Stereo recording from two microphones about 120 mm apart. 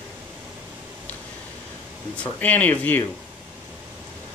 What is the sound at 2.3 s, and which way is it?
Speech, 15° left (ahead or behind).